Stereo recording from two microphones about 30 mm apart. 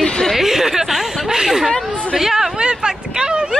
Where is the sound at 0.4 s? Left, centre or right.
Centre.